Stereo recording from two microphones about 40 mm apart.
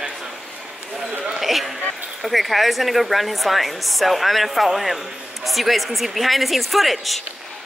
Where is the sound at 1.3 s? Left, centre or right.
Centre.